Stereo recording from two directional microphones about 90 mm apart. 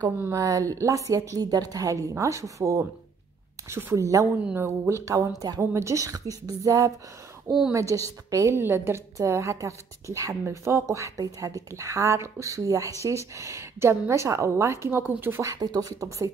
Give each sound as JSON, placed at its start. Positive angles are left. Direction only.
{"t": 0.3, "sound": "a woman's voice", "side_deg": -40}
{"t": 5.4, "sound": "a woman's voice", "side_deg": -45}
{"t": 5.7, "sound": "a woman's voice", "side_deg": -35}
{"t": 15.4, "sound": "a woman's voice", "side_deg": -45}